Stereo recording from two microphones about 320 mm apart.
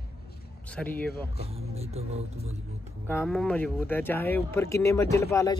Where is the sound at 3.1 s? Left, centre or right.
Centre.